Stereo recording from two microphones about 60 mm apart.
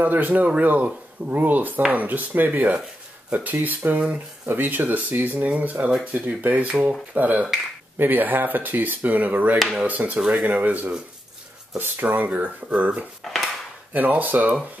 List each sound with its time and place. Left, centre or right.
0.0 s speech: right
6.7 s speech: centre
7.2 s speech: right